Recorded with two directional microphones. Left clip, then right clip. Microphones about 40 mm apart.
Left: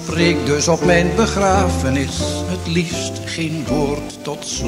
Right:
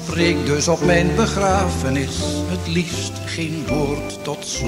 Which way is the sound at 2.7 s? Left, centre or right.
Left.